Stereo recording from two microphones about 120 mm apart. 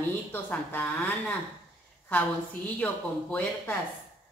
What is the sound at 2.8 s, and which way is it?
Speech, 15° left (ahead or behind).